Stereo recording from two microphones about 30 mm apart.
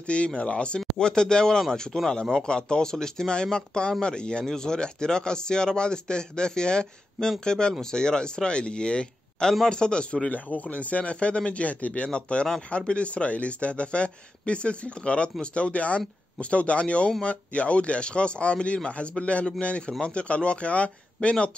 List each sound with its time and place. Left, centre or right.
0.0 s speech: left
0.7 s a man's voice: left
8.5 s a man's voice: left
10.3 s speech: left
12.1 s speech: left